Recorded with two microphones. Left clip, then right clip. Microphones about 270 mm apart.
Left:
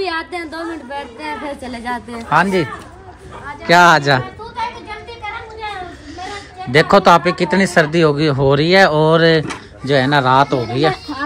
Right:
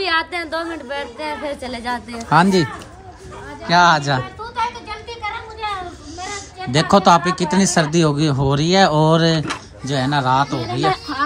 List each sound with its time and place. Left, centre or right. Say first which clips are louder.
0.0 s a woman's voice: right 2 dB; centre
2.2 s speech: even; right
3.6 s speech: left 4 dB; centre
6.7 s speech: left 3 dB; centre
10.6 s speech: left 2 dB; centre